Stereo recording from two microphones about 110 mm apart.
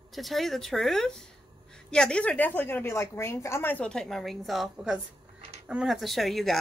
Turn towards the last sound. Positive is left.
turn(degrees=0)  # may be behind; listen again after turning